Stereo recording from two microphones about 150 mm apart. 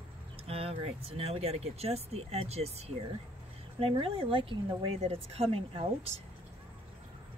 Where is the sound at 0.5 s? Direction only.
40° right (ahead or behind).